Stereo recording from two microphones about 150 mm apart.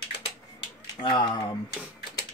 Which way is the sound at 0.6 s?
30° left (ahead or behind).